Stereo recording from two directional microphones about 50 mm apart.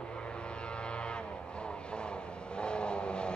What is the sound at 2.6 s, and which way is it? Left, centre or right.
Vehicle, centre.